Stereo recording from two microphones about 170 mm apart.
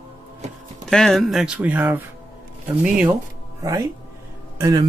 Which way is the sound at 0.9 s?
5° left (ahead or behind).